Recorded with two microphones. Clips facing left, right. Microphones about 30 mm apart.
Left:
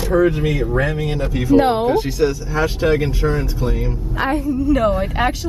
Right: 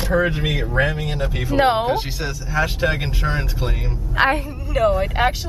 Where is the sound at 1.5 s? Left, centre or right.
Right.